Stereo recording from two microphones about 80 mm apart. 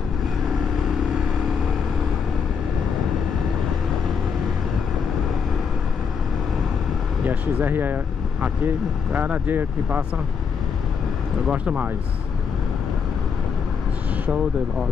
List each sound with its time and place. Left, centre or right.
0.5 s vehicle: centre
7.2 s speech: right
11.5 s speech: centre